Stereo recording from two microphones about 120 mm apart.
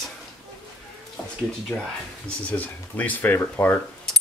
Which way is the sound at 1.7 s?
5° left (ahead or behind).